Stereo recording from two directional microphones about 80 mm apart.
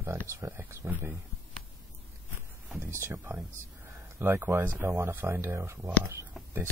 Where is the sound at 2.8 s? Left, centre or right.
Right.